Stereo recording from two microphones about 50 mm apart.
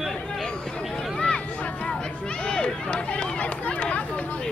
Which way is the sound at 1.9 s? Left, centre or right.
Centre.